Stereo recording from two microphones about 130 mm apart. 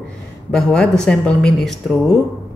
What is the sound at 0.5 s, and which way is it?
A woman's voice, 5° left (ahead or behind).